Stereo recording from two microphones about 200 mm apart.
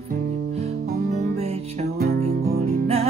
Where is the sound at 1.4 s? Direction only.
30° right (ahead or behind).